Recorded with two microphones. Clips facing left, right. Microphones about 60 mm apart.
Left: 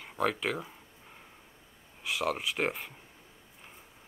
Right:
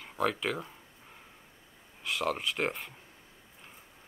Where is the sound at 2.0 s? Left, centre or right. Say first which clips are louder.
Even; centre.